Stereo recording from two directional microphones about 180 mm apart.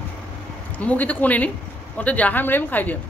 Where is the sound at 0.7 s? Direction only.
10° left (ahead or behind).